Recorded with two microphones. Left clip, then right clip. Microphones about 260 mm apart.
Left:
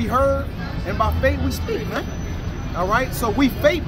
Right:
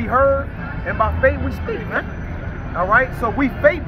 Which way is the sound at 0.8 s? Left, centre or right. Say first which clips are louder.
Right 4 dB; centre.